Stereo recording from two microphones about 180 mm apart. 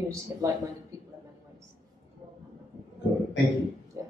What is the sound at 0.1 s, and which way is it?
Speech, 15° right (ahead or behind).